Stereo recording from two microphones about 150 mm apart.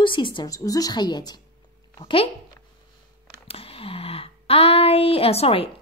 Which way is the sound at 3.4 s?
40° left (ahead or behind).